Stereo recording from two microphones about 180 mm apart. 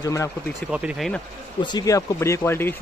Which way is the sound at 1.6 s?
20° left (ahead or behind).